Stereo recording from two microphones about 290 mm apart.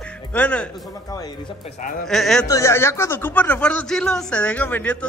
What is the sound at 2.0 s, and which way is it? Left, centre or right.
Speech, centre.